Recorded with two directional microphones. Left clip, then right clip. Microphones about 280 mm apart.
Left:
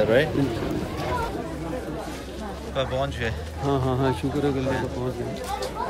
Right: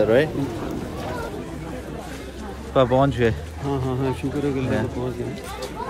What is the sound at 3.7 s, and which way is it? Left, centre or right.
Speech, centre.